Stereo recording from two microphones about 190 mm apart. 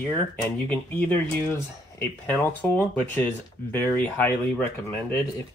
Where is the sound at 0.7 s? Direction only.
5° left (ahead or behind).